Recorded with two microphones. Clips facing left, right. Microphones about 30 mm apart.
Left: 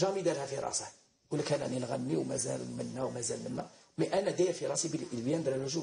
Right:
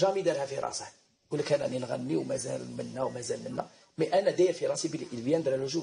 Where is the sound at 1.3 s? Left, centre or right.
Right.